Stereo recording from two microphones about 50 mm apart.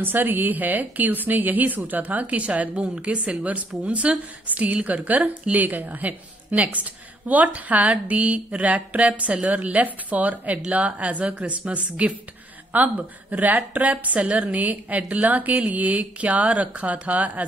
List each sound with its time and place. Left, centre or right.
0.0 s a woman's voice: right